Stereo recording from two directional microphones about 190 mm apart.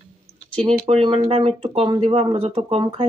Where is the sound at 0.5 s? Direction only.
30° right (ahead or behind).